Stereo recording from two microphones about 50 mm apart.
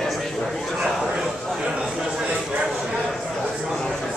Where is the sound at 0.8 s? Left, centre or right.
Centre.